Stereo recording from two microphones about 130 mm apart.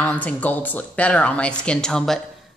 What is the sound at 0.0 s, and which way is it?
A woman's voice, 10° left (ahead or behind).